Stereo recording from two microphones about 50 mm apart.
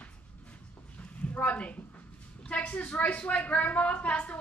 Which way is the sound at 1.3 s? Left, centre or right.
Left.